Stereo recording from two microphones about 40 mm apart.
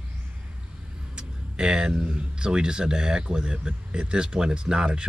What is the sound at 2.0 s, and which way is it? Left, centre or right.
Chicken, right.